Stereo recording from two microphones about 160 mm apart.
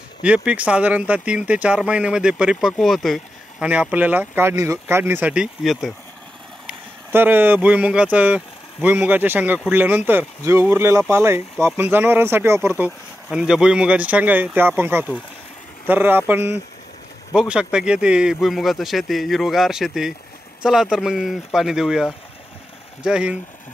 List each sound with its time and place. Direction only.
0.2 s speech: 10° right (ahead or behind)
6.7 s a man's voice: 10° right (ahead or behind)
23.0 s speech: 5° right (ahead or behind)